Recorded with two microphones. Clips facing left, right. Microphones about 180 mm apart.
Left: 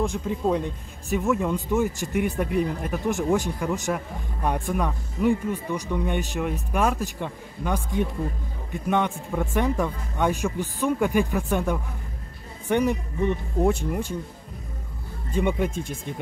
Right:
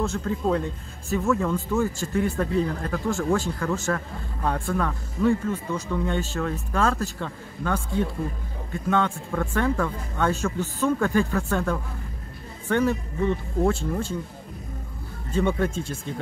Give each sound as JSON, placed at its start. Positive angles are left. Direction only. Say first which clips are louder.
{"t": 0.0, "sound": "speech", "louder": "left 1 dB", "side_deg": 15}
{"t": 15.3, "sound": "speech", "louder": "right 1 dB", "side_deg": 15}